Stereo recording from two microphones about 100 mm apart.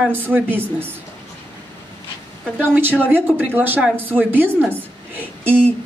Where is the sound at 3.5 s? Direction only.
20° right (ahead or behind).